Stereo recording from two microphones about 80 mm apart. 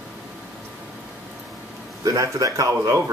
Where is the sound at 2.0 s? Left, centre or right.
Right.